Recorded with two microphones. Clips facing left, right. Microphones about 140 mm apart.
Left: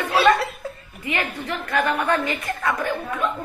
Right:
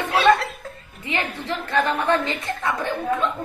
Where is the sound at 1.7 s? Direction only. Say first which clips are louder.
Right 1 dB; 30° right (ahead or behind).